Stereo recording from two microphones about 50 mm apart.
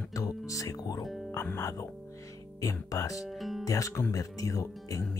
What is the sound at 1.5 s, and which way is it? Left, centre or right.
Speech, left.